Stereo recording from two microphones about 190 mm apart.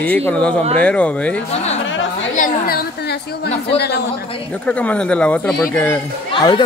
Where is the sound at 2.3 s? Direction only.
50° left (ahead or behind).